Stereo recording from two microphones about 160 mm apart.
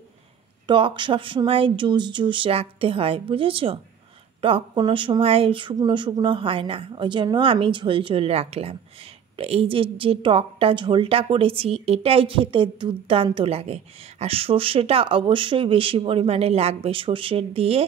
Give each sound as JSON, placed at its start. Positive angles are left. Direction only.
{"t": 0.7, "sound": "a woman's voice", "side_deg": -30}